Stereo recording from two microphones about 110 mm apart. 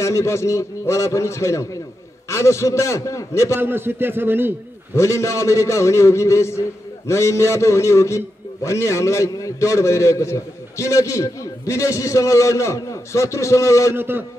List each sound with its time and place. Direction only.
0.0 s a man's voice: 25° left (ahead or behind)
3.5 s a man's voice: 20° right (ahead or behind)
4.9 s a man's voice: 25° left (ahead or behind)
13.9 s a man's voice: 20° right (ahead or behind)